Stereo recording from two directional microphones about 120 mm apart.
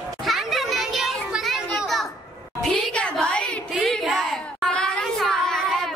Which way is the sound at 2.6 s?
10° left (ahead or behind).